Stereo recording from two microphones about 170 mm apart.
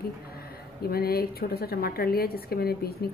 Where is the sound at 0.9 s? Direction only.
65° left (ahead or behind).